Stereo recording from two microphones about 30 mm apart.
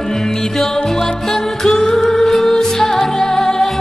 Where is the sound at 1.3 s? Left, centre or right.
Centre.